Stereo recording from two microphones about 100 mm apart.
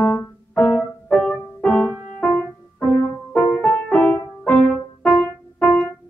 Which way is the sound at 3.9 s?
15° left (ahead or behind).